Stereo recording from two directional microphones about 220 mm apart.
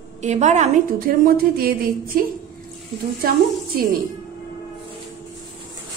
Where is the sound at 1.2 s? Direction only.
40° right (ahead or behind).